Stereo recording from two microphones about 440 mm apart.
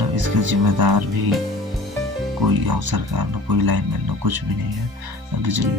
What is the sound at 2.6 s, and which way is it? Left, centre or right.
Speech, right.